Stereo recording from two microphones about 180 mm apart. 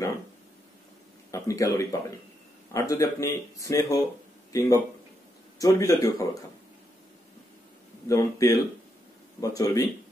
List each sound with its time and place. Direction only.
1.3 s a man's voice: 15° left (ahead or behind)
8.1 s speech: 15° left (ahead or behind)